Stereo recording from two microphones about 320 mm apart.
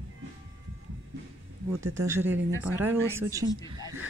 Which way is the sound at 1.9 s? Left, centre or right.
Centre.